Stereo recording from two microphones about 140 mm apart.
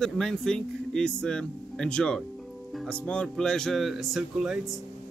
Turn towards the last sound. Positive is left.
turn(degrees=0)  # may be behind; listen again after turning